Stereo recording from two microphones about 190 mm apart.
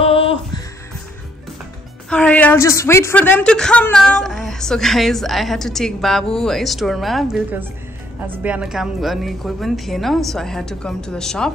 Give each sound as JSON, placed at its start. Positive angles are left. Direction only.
{"t": 0.0, "sound": "music", "side_deg": 30}
{"t": 2.0, "sound": "a woman's voice", "side_deg": 5}